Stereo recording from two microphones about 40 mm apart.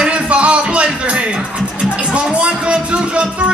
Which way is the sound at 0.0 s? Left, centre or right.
Right.